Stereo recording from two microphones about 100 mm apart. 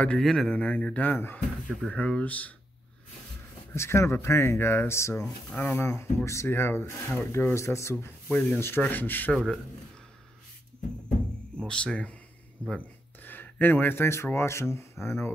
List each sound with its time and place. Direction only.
0.0 s speech: 5° left (ahead or behind)
3.7 s speech: 25° left (ahead or behind)
11.5 s speech: 10° left (ahead or behind); by 15.3 s 25° left (ahead or behind)